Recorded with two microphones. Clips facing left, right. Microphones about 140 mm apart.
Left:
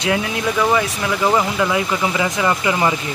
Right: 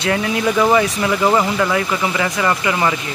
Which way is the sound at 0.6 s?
5° right (ahead or behind).